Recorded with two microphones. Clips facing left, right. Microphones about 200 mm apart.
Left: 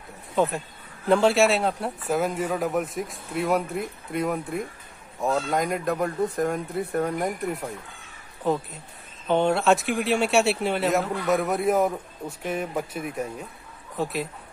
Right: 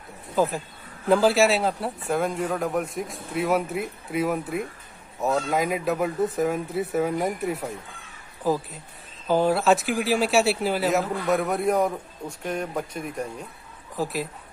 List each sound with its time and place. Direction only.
0.4 s speech: centre (ahead or behind)